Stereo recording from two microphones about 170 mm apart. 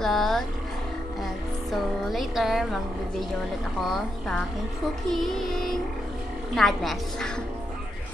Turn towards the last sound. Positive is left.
turn(degrees=5)  # may be behind; listen again after turning